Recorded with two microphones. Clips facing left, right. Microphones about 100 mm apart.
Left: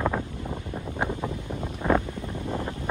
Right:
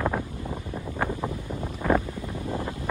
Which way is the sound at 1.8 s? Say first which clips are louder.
Even; 20° left (ahead or behind).